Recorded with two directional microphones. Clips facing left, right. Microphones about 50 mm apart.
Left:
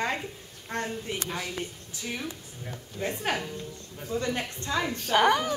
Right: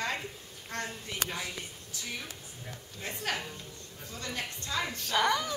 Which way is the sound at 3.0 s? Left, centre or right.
Left.